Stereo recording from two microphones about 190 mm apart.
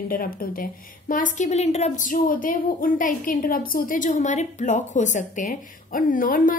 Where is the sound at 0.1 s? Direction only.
50° left (ahead or behind).